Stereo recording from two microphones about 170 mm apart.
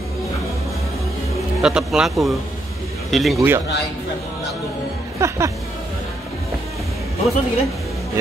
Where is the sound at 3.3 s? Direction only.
15° right (ahead or behind).